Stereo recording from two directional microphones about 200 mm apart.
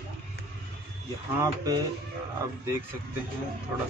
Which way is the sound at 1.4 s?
20° right (ahead or behind).